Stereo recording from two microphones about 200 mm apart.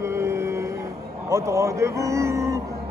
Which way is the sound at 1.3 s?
15° right (ahead or behind).